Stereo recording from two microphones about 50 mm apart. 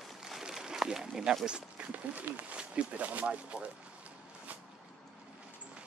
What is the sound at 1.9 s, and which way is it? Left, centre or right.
Speech, right.